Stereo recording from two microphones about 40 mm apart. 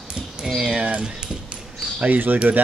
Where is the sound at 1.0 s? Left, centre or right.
Centre.